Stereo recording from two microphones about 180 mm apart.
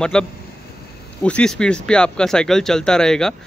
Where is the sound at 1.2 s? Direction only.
5° left (ahead or behind).